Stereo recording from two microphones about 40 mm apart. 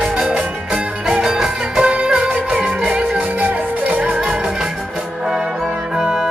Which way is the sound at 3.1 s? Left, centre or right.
Right.